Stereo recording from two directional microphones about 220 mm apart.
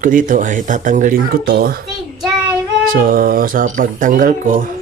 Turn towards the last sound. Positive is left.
turn(degrees=-40)  # may be behind; listen again after turning